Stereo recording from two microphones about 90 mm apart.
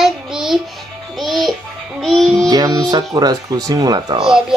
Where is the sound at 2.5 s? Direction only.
45° right (ahead or behind).